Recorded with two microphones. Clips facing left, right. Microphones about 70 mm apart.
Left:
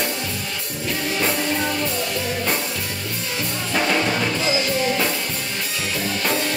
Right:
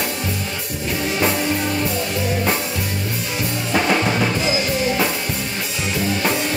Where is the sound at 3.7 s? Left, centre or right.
Centre.